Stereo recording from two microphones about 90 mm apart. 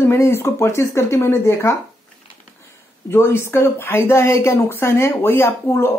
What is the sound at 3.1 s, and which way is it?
Speech, 25° left (ahead or behind).